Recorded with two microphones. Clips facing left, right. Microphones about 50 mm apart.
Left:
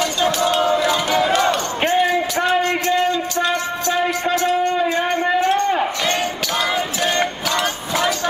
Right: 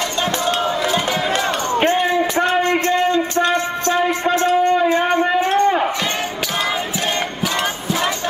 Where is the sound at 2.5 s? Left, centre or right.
Right.